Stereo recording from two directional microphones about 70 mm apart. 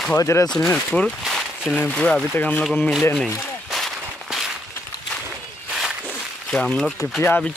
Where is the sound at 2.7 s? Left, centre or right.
Centre.